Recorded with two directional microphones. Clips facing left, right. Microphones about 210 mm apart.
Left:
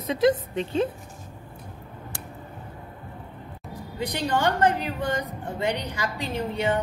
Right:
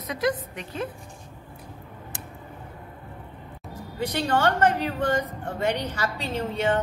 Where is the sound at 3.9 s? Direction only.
15° left (ahead or behind).